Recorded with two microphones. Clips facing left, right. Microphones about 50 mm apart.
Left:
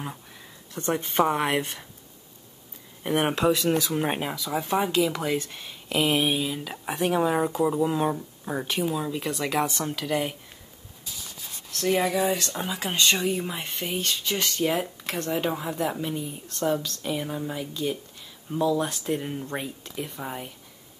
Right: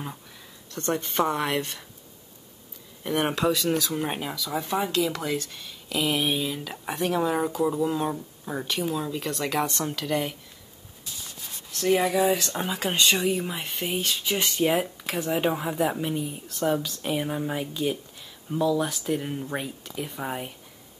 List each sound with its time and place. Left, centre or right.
0.7 s speech: centre
3.0 s speech: left
4.5 s speech: centre; by 6.2 s left
6.2 s speech: centre
11.7 s speech: centre; by 17.6 s right
18.5 s speech: centre
20.2 s speech: centre